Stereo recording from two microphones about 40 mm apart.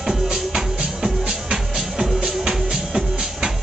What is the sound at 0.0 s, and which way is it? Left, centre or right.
Music, centre.